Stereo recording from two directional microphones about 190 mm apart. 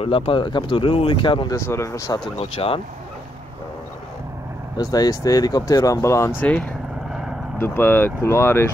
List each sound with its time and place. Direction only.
0.0 s speech: 30° left (ahead or behind)
2.3 s speech: 30° left (ahead or behind)
4.7 s speech: 20° left (ahead or behind)